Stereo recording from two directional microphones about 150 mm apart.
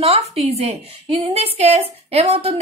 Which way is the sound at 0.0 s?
40° right (ahead or behind).